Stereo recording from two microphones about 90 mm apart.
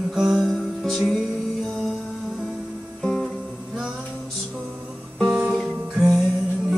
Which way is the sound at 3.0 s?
5° left (ahead or behind).